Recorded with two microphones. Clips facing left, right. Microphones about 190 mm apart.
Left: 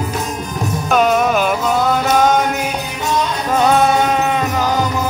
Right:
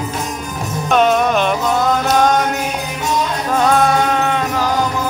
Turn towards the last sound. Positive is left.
turn(degrees=5)  # may be behind; listen again after turning